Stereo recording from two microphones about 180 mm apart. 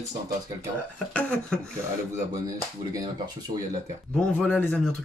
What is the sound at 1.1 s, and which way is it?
Speech, 5° left (ahead or behind).